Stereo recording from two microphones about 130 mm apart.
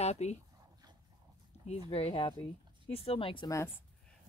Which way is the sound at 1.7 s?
50° left (ahead or behind).